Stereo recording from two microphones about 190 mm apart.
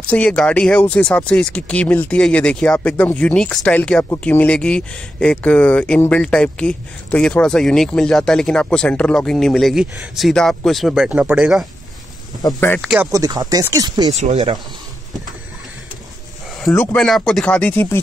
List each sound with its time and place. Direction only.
0.1 s speech: 5° left (ahead or behind)
12.4 s speech: 15° left (ahead or behind)
12.8 s speech: 5° right (ahead or behind)
13.1 s speech: 20° right (ahead or behind)
14.1 s speech: 35° right (ahead or behind)
16.7 s speech: 10° left (ahead or behind)